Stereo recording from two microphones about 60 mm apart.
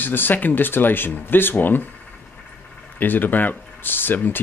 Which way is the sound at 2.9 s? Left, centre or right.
Left.